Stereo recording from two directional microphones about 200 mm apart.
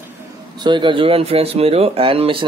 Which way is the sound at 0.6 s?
25° right (ahead or behind).